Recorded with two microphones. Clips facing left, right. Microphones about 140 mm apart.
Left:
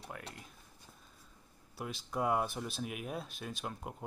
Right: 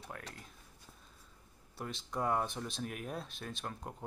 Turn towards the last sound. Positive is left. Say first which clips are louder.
# left 1 dB
turn(degrees=5)  # may be behind; listen again after turning